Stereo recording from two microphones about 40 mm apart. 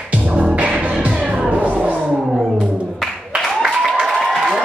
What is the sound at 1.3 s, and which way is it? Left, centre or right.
Music, centre.